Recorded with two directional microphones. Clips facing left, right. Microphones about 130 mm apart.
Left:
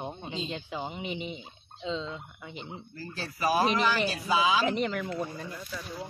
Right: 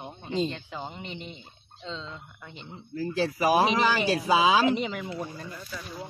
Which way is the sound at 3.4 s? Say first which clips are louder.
Right 2 dB; 90° right.